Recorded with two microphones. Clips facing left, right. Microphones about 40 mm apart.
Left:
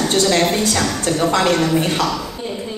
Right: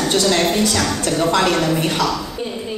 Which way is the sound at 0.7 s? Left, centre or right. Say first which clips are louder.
Even; left.